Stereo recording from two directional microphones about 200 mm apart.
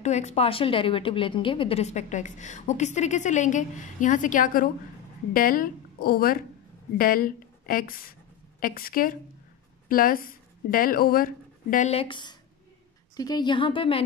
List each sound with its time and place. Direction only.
0.0 s a woman's voice: 35° left (ahead or behind)